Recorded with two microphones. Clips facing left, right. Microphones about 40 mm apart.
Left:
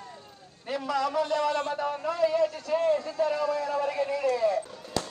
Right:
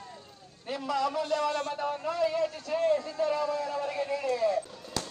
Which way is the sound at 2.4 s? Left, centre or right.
Left.